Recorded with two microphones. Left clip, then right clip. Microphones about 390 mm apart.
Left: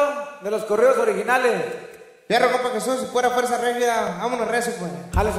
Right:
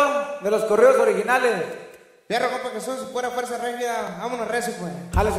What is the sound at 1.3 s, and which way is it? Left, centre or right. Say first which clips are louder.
Music: left 1 dB; centre.